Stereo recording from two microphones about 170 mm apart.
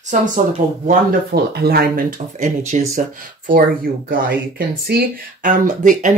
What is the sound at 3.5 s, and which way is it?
Speech, 60° right (ahead or behind).